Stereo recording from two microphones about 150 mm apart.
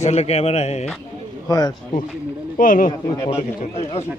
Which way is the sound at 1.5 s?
25° left (ahead or behind).